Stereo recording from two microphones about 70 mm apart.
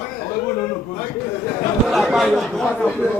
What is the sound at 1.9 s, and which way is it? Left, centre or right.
Speech, centre.